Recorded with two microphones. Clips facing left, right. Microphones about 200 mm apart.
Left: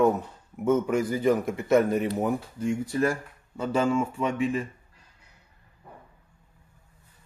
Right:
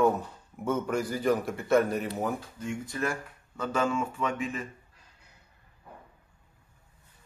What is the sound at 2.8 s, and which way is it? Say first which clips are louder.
Speech: left 6 dB; 30° left (ahead or behind).